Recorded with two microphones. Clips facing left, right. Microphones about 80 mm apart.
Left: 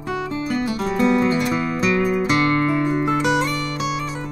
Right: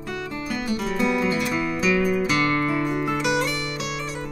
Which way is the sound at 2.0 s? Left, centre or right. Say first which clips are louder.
Left 2 dB; left.